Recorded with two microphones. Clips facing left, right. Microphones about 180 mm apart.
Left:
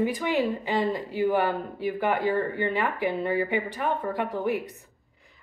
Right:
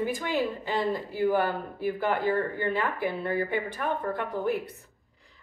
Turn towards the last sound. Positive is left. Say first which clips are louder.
# left 2 dB
turn(degrees=15)  # may be behind; listen again after turning